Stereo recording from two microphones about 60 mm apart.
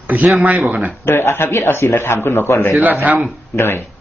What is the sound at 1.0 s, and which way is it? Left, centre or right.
A man's voice, left.